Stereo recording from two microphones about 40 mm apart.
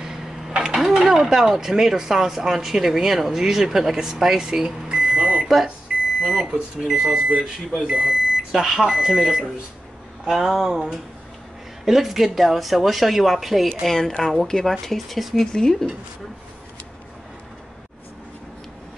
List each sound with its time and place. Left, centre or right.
0.0 s a sound: centre
1.0 s speech: centre
4.8 s a sound: right
5.4 s microwave oven: centre
6.2 s speech: centre
7.2 s speech: right; by 13.7 s centre
13.8 s speech: centre
15.5 s speech: centre